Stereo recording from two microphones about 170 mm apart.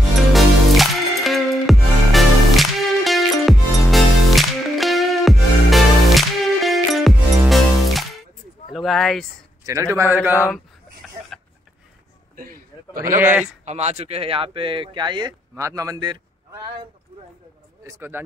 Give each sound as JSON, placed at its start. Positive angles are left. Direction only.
{"t": 0.3, "sound": "music", "side_deg": 0}
{"t": 8.7, "sound": "speech", "side_deg": 0}
{"t": 9.7, "sound": "a man's voice", "side_deg": -15}
{"t": 10.5, "sound": "a sound", "side_deg": 5}
{"t": 12.4, "sound": "a sound", "side_deg": -55}
{"t": 13.2, "sound": "a man's voice", "side_deg": -10}
{"t": 13.7, "sound": "speech", "side_deg": -40}
{"t": 17.8, "sound": "a man's voice", "side_deg": -15}